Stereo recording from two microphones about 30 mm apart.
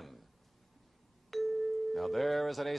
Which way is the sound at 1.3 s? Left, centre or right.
Centre.